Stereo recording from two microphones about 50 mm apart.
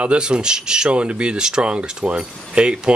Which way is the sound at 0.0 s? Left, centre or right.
Right.